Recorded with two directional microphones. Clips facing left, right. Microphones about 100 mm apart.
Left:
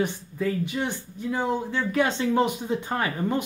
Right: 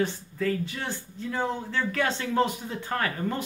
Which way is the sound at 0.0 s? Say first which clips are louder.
Left 1 dB; 15° left (ahead or behind).